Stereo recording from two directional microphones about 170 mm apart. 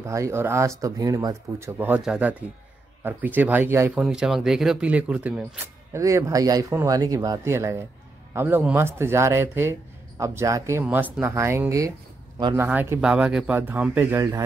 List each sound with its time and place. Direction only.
0.0 s a man's voice: 15° right (ahead or behind)
4.0 s speech: 5° right (ahead or behind)
5.9 s a man's voice: 20° right (ahead or behind)